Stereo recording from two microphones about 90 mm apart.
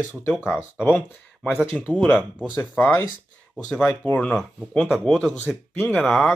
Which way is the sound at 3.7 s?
10° left (ahead or behind).